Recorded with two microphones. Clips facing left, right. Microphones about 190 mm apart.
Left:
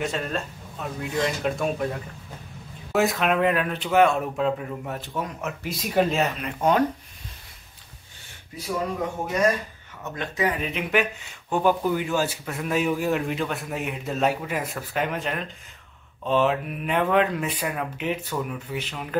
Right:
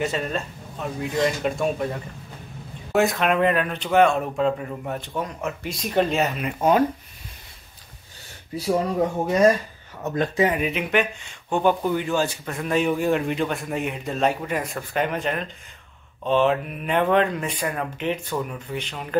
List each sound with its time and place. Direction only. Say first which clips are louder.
0.0 s speech: right 2 dB; centre (ahead or behind)
2.9 s speech: right 2 dB; centre (ahead or behind)
10.0 s speech: right 8 dB; 35° right (ahead or behind)
10.6 s speech: right 2 dB; 5° right (ahead or behind)